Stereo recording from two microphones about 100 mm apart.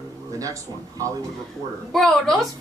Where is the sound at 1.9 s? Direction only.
Centre (ahead or behind).